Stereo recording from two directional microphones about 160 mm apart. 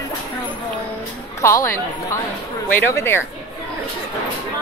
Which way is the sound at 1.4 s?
20° left (ahead or behind).